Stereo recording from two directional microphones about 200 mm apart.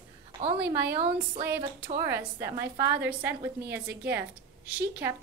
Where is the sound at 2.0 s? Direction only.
10° right (ahead or behind).